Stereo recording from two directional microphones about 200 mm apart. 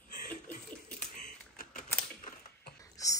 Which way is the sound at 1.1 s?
40° left (ahead or behind).